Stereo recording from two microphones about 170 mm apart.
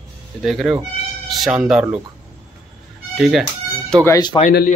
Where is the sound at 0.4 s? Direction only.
Centre (ahead or behind).